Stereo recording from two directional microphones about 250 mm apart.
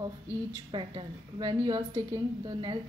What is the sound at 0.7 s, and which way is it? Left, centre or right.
A woman's voice, centre.